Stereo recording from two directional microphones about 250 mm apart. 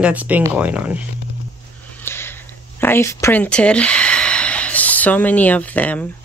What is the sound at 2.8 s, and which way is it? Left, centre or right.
Speech, centre.